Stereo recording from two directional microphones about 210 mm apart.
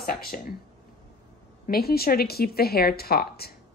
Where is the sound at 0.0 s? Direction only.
45° left (ahead or behind).